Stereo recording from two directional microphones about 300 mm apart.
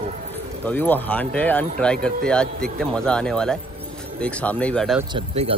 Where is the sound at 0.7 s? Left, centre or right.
Centre.